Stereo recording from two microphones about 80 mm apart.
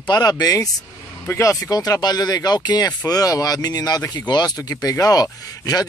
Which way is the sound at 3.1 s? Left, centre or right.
Left.